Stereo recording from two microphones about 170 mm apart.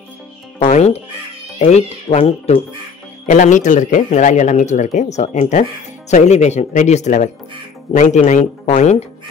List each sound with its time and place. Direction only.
0.6 s music: 40° left (ahead or behind)
1.6 s speech: 40° left (ahead or behind)